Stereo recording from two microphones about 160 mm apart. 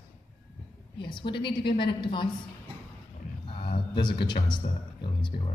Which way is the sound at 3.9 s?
30° left (ahead or behind).